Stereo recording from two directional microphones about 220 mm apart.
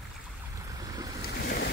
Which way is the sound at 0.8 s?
15° right (ahead or behind).